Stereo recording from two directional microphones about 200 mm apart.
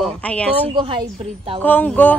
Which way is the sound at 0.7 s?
25° right (ahead or behind).